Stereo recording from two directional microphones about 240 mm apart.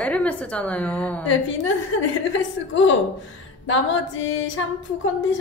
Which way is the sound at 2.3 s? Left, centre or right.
Left.